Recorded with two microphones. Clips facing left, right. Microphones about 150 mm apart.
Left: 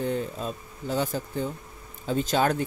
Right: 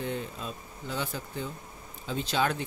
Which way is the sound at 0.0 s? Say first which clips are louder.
Left 6 dB; 40° left (ahead or behind).